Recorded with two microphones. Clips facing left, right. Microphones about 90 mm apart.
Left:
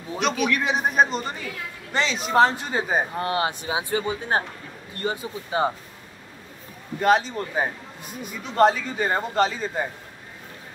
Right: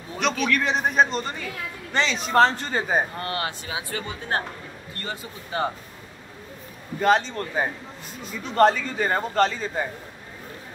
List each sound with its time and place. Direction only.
0.2 s a man's voice: 5° left (ahead or behind)
3.2 s speech: 20° left (ahead or behind)
7.0 s a man's voice: 5° left (ahead or behind)
8.5 s a man's voice: 5° left (ahead or behind)